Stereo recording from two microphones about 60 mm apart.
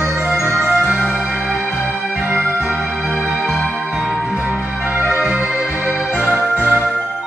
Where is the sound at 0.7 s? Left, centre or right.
Right.